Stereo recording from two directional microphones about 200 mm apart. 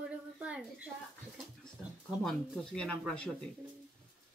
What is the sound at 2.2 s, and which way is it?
Speech, 5° left (ahead or behind).